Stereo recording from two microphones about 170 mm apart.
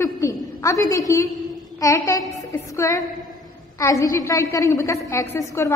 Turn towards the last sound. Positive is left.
turn(degrees=15)  # may be behind; listen again after turning